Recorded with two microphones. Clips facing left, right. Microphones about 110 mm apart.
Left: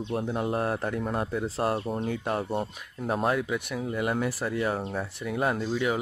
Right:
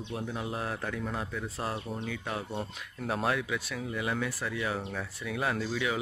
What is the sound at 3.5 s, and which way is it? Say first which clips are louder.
Speech: left 5 dB; 20° left (ahead or behind).